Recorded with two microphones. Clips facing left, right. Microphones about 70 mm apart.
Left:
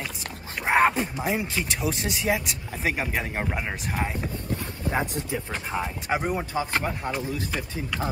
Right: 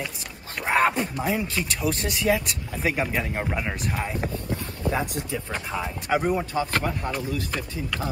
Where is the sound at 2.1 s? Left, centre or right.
Centre.